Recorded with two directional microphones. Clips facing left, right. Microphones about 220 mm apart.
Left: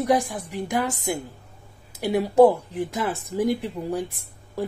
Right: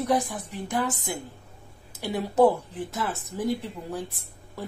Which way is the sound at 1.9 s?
10° left (ahead or behind).